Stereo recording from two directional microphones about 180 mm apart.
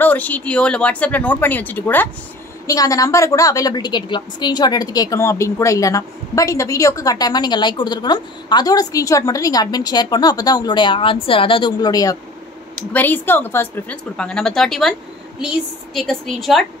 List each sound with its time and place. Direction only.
0.0 s a woman's voice: 10° left (ahead or behind)